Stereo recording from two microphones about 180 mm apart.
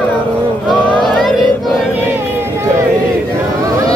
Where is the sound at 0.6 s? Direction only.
Centre (ahead or behind).